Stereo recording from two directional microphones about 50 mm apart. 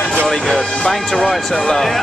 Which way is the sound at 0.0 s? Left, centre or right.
Left.